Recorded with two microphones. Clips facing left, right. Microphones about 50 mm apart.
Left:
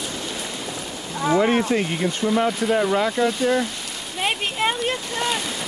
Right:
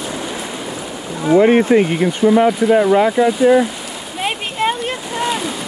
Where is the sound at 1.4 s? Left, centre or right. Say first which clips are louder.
Right 8 dB; right.